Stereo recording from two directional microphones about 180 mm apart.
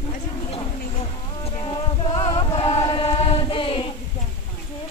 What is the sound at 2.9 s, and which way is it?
Chant, 30° left (ahead or behind).